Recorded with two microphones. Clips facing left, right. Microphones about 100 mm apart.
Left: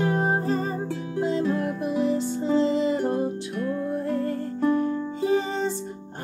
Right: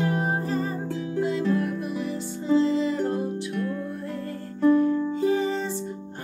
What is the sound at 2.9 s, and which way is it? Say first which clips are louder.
Music: left 1 dB; 15° left (ahead or behind).